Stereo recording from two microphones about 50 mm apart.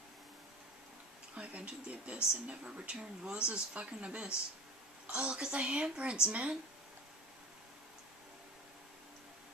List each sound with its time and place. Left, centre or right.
1.3 s speech: right